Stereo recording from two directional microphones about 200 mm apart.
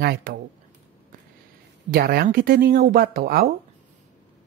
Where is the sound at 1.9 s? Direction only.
50° right (ahead or behind).